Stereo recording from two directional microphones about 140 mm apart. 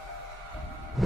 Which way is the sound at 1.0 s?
Centre (ahead or behind).